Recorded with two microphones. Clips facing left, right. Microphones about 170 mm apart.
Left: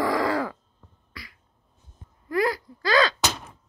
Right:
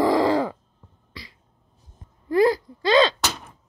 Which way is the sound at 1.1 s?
25° right (ahead or behind).